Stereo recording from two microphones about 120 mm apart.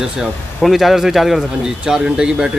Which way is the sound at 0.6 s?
Centre (ahead or behind).